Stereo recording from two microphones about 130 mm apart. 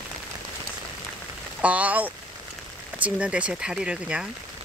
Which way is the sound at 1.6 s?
10° right (ahead or behind).